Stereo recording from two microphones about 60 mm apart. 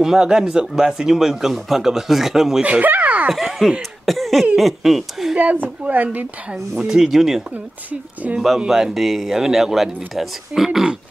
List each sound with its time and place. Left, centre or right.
0.0 s speech: centre
2.6 s speech: right
3.3 s speech: centre
4.0 s cough: centre
4.6 s speech: centre
5.3 s speech: right
6.8 s speech: centre
7.9 s speech: right
8.5 s speech: centre